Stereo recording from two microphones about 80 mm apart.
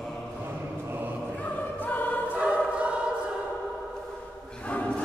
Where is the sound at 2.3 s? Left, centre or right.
Centre.